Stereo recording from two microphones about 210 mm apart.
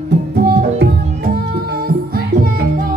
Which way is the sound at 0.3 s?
45° right (ahead or behind).